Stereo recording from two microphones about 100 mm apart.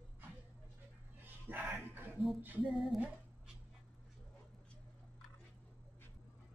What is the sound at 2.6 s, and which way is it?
Music, centre (ahead or behind).